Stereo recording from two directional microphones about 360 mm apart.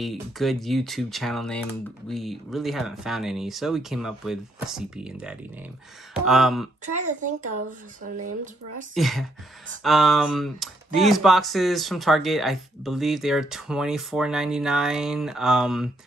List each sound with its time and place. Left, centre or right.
0.0 s speech: centre
7.0 s a child's voice: right
8.9 s speech: centre